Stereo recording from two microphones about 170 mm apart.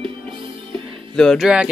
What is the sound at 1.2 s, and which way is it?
Speech, centre (ahead or behind).